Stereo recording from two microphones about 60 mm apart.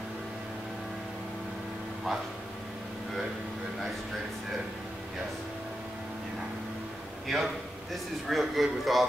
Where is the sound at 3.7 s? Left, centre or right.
Centre.